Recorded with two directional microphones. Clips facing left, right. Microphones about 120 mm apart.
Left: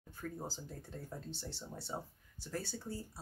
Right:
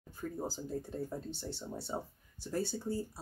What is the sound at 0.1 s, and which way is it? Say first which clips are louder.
Speech: right 5 dB; 15° right (ahead or behind).